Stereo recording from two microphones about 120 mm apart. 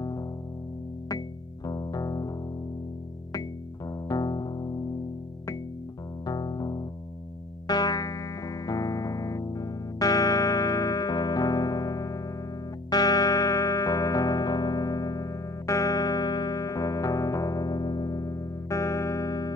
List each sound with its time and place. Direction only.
1.7 s music: 30° left (ahead or behind)
3.9 s music: 30° left (ahead or behind)
6.2 s music: 30° left (ahead or behind)